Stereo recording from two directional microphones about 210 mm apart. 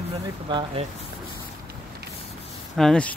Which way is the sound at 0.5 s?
20° right (ahead or behind).